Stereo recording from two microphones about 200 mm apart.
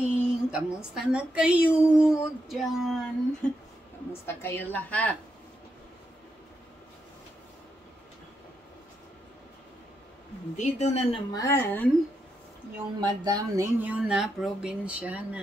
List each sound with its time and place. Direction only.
0.1 s a woman's voice: 5° right (ahead or behind)
10.5 s speech: 35° left (ahead or behind)
11.3 s a woman's voice: 15° left (ahead or behind)
12.7 s speech: 20° right (ahead or behind)
13.8 s speech: 5° right (ahead or behind)